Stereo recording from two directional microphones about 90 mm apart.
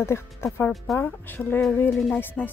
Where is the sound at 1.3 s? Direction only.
25° left (ahead or behind).